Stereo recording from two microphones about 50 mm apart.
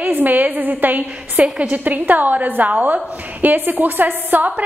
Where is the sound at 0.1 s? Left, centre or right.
Right.